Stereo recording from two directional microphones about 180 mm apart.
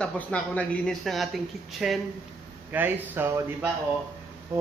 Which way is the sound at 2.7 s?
10° right (ahead or behind).